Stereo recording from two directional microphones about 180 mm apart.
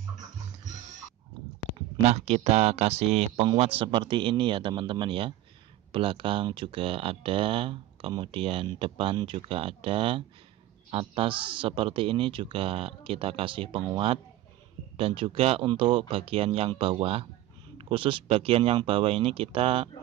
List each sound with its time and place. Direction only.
2.0 s speech: 35° right (ahead or behind)